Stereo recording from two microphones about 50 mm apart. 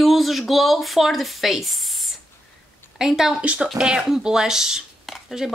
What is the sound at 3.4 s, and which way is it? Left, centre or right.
Speech, right.